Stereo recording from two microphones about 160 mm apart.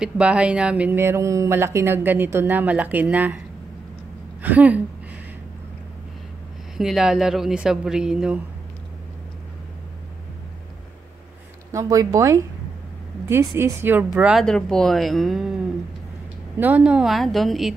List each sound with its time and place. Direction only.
0.0 s speech: 5° right (ahead or behind)
4.4 s a woman's voice: 10° right (ahead or behind)
6.8 s speech: 5° right (ahead or behind)
11.7 s speech: 20° right (ahead or behind)
13.6 s speech: 15° right (ahead or behind); by 15.5 s centre (ahead or behind)
16.5 s speech: 10° right (ahead or behind)